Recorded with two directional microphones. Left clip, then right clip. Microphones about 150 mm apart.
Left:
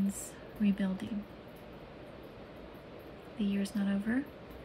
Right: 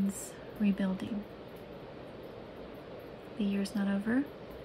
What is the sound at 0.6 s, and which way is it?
Speech, 10° right (ahead or behind).